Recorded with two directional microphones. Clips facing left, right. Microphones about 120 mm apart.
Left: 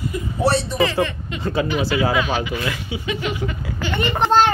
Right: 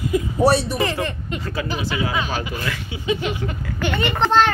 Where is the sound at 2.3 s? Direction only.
40° right (ahead or behind).